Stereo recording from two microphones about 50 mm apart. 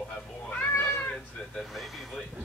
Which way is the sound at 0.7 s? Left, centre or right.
Left.